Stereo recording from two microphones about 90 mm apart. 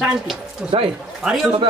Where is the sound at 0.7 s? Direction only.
90° right.